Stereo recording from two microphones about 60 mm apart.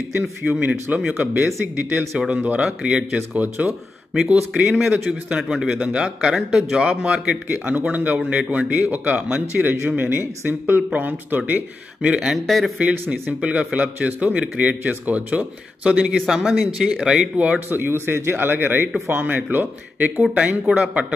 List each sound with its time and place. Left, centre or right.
0.4 s speech: right
1.1 s speech: right; by 3.2 s centre
3.2 s speech: right
4.1 s speech: centre
7.0 s speech: centre
7.5 s speech: right
12.1 s speech: centre
12.4 s speech: centre
13.1 s speech: right
17.4 s speech: right
17.6 s speech: right
20.2 s speech: centre